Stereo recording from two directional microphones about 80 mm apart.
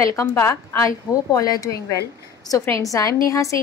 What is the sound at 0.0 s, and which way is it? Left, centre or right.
A woman's voice, left.